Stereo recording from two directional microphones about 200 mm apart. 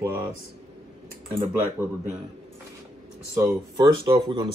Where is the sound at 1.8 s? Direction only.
10° right (ahead or behind).